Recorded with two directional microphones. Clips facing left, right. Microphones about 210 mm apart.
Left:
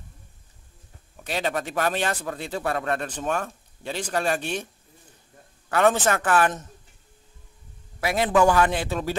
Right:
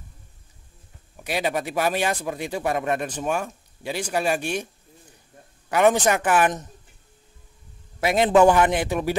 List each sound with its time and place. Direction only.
1.1 s a man's voice: 10° right (ahead or behind)
5.7 s a man's voice: 15° right (ahead or behind)
8.0 s a man's voice: 20° right (ahead or behind)